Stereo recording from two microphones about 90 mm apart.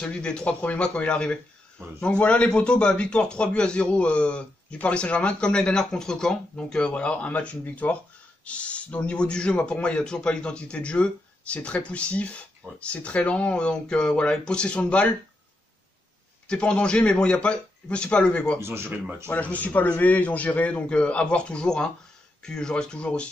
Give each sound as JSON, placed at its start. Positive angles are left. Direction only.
{"t": 0.0, "sound": "speech", "side_deg": 10}
{"t": 16.4, "sound": "speech", "side_deg": 10}
{"t": 18.6, "sound": "speech", "side_deg": -25}
{"t": 19.2, "sound": "speech", "side_deg": 15}